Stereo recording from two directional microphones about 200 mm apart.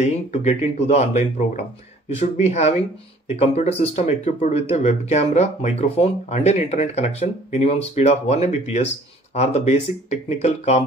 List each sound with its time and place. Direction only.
0.0 s speech: 35° left (ahead or behind)